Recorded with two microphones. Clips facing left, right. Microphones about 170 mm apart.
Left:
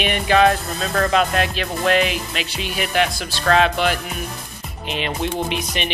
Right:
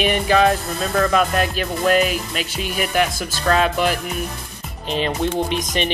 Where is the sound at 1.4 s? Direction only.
40° right (ahead or behind).